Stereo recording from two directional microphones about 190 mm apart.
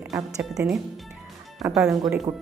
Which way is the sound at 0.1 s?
Centre (ahead or behind).